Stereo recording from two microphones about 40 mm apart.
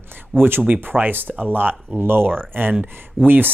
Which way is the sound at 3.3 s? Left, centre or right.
Right.